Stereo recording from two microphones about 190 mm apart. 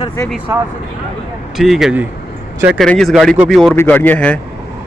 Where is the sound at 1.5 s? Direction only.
Centre (ahead or behind).